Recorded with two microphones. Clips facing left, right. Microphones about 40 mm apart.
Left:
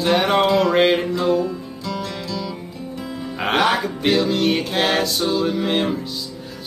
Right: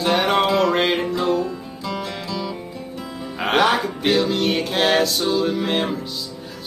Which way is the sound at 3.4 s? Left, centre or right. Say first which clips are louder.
Right 1 dB; centre.